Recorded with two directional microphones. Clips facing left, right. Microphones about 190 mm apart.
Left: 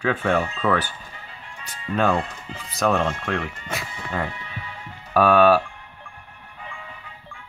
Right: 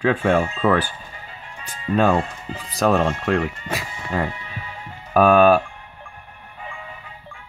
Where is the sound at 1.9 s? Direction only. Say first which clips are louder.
Right 3 dB; 10° right (ahead or behind).